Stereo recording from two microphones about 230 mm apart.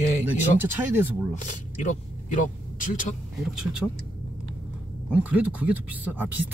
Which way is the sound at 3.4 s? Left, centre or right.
Centre.